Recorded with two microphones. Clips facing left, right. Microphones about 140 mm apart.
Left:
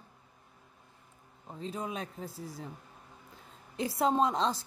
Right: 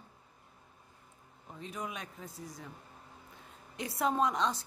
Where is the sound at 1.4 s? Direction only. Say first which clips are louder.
Left 4 dB; 30° left (ahead or behind).